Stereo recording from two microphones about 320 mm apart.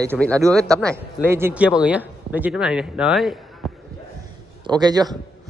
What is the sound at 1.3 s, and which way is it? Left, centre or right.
A man's voice, centre.